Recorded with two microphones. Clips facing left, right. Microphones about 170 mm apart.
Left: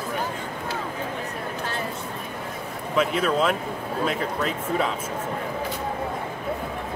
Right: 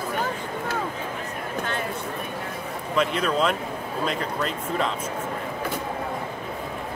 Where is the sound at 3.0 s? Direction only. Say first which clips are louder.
Left 1 dB; 5° left (ahead or behind).